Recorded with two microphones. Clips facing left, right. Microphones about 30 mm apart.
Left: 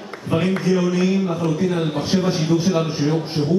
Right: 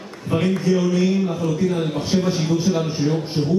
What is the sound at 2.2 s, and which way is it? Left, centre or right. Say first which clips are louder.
Speech: left 3 dB; left.